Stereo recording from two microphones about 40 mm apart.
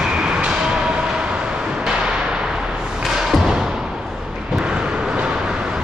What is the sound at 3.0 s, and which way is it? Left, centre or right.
Thump, centre.